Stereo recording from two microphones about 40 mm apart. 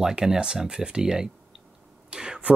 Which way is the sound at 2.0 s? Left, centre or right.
Right.